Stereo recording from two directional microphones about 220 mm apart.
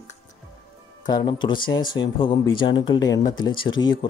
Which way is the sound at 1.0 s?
20° left (ahead or behind).